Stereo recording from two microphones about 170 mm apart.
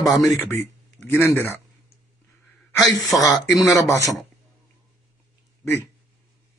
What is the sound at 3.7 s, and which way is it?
Speech, 20° left (ahead or behind).